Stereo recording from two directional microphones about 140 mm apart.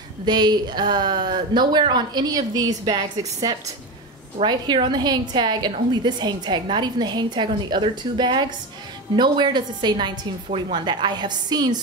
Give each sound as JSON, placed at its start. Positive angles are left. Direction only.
{"t": 0.2, "sound": "a woman's voice", "side_deg": -30}